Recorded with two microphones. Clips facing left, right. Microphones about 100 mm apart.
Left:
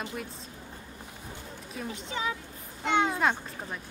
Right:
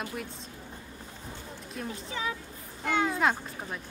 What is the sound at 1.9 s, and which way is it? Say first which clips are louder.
Speech: left 2 dB; 20° left (ahead or behind).